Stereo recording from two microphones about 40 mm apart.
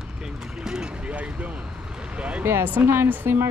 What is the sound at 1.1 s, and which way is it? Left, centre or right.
Speech, right.